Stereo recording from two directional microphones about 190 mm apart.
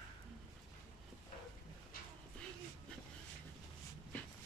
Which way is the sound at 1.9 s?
50° left (ahead or behind).